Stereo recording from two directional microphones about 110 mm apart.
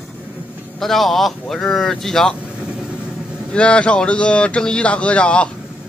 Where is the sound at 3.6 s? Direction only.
10° left (ahead or behind).